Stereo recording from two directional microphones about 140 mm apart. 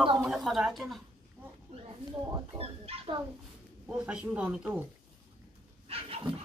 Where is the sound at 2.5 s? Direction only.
45° right (ahead or behind).